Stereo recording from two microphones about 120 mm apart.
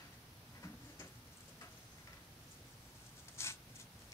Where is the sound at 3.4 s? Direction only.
20° left (ahead or behind).